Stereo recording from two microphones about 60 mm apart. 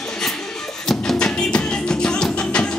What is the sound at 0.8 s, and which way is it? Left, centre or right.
Music, centre.